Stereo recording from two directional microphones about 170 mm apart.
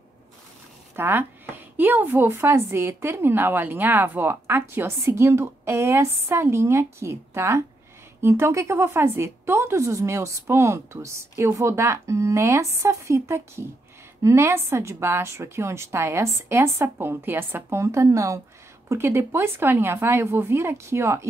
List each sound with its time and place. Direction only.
0.9 s a woman's voice: 10° right (ahead or behind)